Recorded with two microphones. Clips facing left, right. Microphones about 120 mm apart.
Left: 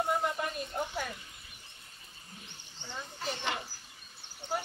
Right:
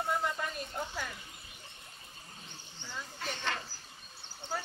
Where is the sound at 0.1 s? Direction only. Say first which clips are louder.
Left 2 dB; 20° left (ahead or behind).